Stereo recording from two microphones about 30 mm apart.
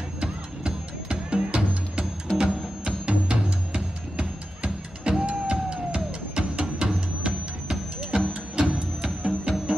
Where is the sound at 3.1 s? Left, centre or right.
Right.